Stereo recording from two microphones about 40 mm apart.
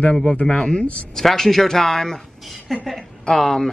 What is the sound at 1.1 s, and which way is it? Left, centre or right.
Speech, centre.